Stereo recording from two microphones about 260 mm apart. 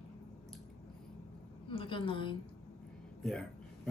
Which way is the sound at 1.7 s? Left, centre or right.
Centre.